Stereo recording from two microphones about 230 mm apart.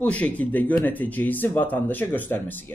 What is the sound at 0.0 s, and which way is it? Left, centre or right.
A man's voice, centre.